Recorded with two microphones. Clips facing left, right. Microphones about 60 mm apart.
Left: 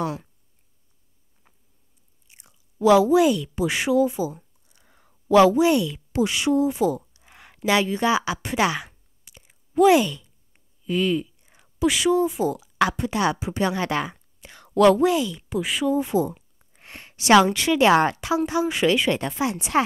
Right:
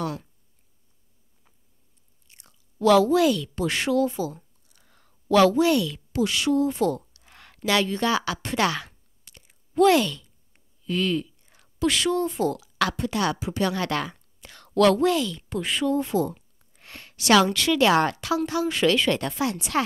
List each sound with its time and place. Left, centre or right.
0.0 s speech: centre
2.2 s speech: centre
8.3 s a sound: centre
10.5 s speech: centre